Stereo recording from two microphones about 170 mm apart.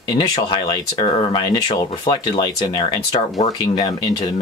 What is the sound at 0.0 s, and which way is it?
Speech, 30° left (ahead or behind).